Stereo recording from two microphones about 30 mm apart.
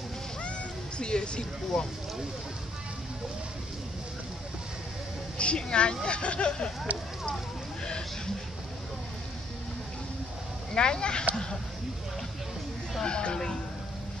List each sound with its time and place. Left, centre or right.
0.9 s speech: left
1.7 s speech: centre
5.4 s speech: left
10.7 s speech: left
13.0 s speech: left